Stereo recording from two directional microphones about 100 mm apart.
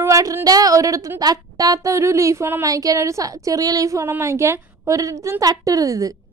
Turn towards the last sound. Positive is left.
turn(degrees=-35)  # may be behind; listen again after turning